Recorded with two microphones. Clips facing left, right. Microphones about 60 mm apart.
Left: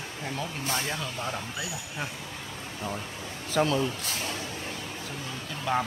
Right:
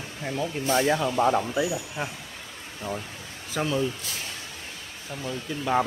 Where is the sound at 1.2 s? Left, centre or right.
Right.